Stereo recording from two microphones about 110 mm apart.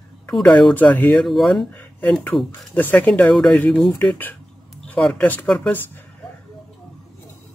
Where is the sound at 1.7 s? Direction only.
15° left (ahead or behind).